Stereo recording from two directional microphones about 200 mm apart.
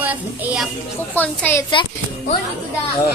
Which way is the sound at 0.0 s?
10° right (ahead or behind).